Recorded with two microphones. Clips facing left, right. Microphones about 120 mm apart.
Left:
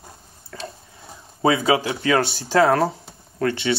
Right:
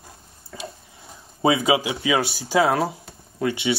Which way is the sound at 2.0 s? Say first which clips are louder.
Left 2 dB; 5° right (ahead or behind).